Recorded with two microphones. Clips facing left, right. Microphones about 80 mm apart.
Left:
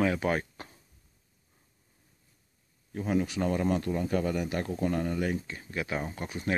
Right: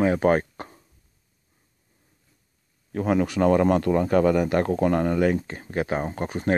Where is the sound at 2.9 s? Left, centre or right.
Right.